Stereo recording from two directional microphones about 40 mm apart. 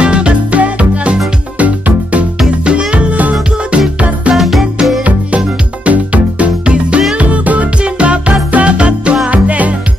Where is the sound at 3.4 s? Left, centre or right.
Right.